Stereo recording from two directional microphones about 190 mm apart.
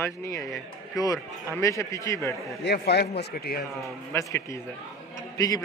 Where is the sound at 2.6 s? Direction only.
60° left (ahead or behind).